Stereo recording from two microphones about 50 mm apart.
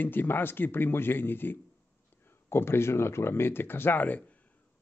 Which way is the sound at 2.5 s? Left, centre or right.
Left.